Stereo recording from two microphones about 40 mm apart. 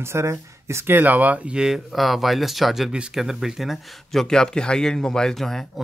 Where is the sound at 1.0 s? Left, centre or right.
Right.